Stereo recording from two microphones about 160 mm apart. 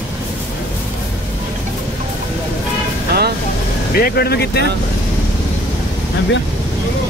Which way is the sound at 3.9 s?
75° left (ahead or behind).